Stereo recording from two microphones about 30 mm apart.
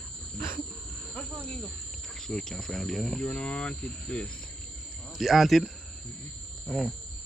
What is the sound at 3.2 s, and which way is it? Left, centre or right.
Speech, left.